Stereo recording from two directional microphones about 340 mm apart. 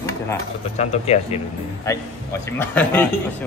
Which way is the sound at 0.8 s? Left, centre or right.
Centre.